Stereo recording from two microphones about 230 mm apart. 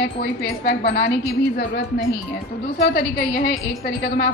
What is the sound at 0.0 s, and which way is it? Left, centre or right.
A woman's voice, left.